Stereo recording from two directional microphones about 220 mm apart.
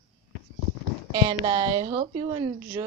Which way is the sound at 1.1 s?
20° right (ahead or behind).